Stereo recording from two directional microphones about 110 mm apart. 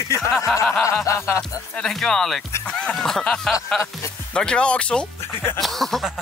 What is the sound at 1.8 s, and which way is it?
Speech, 5° left (ahead or behind).